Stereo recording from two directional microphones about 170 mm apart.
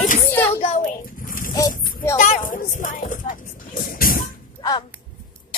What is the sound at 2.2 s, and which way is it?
Speech, 50° left (ahead or behind).